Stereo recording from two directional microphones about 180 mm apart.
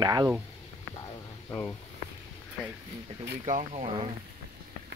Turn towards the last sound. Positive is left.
turn(degrees=-35)  # may be behind; listen again after turning